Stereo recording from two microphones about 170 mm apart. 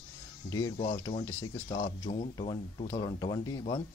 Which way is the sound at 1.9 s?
35° left (ahead or behind).